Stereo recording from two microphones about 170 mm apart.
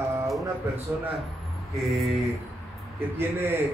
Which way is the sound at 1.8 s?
Centre (ahead or behind).